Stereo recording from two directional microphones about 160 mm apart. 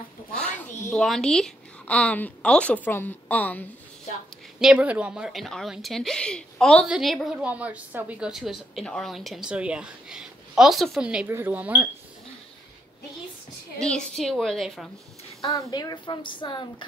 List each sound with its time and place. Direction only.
0.3 s a sound: 5° left (ahead or behind)
0.9 s a woman's voice: centre (ahead or behind)
4.6 s a woman's voice: 5° right (ahead or behind)
13.7 s a woman's voice: 5° left (ahead or behind)
15.5 s a woman's voice: 20° left (ahead or behind)